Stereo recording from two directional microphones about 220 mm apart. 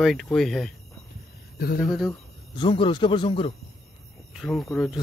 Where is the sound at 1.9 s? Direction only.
Centre (ahead or behind).